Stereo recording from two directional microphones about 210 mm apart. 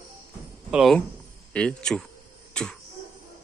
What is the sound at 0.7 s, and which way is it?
Speech, centre (ahead or behind).